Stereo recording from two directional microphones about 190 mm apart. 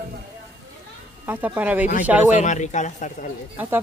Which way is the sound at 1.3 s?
10° right (ahead or behind).